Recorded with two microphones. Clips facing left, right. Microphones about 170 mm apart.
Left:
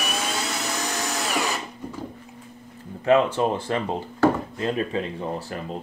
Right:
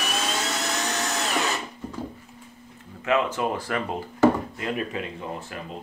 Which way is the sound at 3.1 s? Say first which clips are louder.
Left 5 dB; 30° left (ahead or behind).